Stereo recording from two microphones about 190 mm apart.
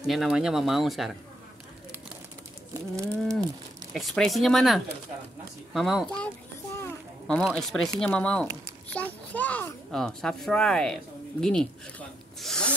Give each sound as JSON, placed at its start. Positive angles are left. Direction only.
{"t": 0.0, "sound": "a child's voice", "side_deg": 0}
{"t": 2.7, "sound": "livestock", "side_deg": -15}
{"t": 3.9, "sound": "a child's voice", "side_deg": 0}
{"t": 6.8, "sound": "a sound", "side_deg": 5}
{"t": 7.4, "sound": "a child's voice", "side_deg": 0}
{"t": 12.4, "sound": "a child's voice", "side_deg": 5}